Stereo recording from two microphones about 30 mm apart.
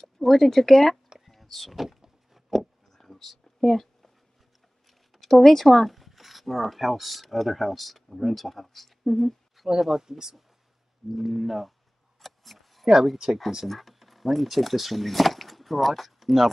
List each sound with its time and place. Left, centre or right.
0.0 s speech: centre
1.2 s vehicle: centre
5.1 s a sound: centre
5.4 s speech: centre
5.7 s speech: centre
9.7 s speech: centre
11.1 s speech: centre
12.2 s a sound: centre
13.7 s speech: centre